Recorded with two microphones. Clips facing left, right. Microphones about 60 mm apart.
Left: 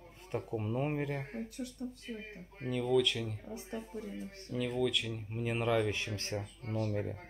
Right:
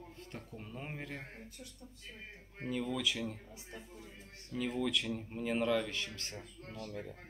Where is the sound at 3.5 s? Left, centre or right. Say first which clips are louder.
Left 9 dB; left.